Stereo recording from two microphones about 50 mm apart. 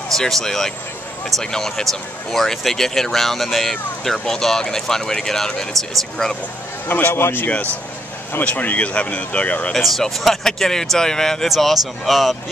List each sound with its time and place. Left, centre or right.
0.1 s speech: centre
6.9 s speech: left
7.2 s speech: left
8.5 s speech: left
9.8 s speech: centre
11.4 s speech: centre